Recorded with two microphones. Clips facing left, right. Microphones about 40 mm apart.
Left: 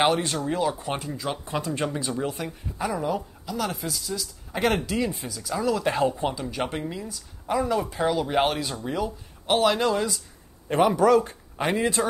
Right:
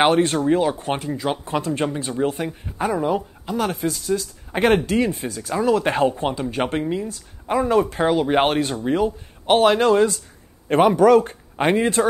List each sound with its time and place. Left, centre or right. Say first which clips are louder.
0.0 s speech: right 6 dB; right
5.6 s speech: right 5 dB; right